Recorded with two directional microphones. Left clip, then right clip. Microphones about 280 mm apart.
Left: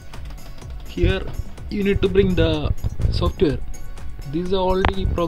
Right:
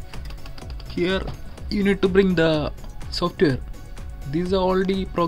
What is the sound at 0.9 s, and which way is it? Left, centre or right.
Speech, centre.